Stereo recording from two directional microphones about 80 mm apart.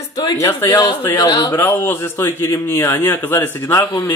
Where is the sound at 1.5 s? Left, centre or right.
Left.